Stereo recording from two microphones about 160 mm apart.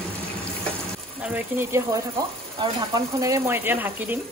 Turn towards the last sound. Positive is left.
turn(degrees=-15)  # may be behind; listen again after turning